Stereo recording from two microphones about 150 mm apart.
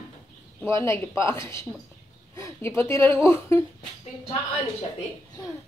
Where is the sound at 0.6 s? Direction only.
20° left (ahead or behind).